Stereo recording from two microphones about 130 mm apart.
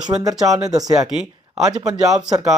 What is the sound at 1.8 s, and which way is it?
Speech, 25° right (ahead or behind).